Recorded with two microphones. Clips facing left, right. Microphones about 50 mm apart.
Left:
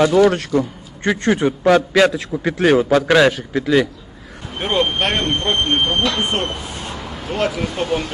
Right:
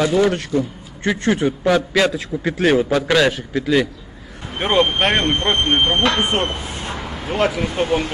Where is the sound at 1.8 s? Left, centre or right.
Centre.